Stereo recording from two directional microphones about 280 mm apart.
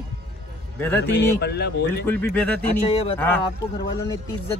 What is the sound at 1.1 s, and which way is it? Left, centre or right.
Speech, left.